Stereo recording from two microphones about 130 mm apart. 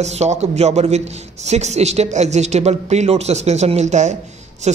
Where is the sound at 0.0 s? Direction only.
60° right (ahead or behind).